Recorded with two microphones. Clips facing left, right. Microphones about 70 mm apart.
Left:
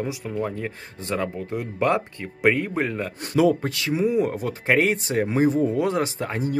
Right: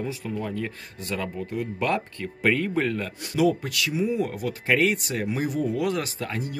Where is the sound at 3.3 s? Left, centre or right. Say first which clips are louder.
Left 3 dB; left.